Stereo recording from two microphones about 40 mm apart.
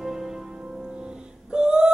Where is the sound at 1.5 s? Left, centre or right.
Right.